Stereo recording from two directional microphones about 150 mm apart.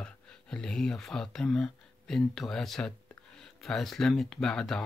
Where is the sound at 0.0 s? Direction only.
5° left (ahead or behind).